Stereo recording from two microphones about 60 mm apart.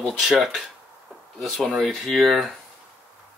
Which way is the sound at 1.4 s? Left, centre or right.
Centre.